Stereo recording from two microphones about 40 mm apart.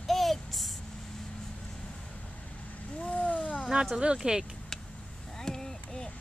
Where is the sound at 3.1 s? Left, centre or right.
Left.